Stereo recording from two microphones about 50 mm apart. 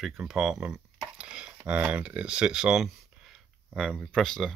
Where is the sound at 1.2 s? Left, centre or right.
Centre.